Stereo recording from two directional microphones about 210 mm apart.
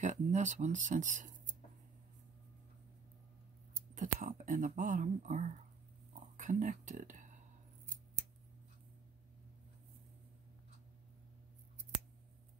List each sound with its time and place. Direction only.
0.0 s speech: 35° right (ahead or behind)
3.9 s speech: 40° right (ahead or behind)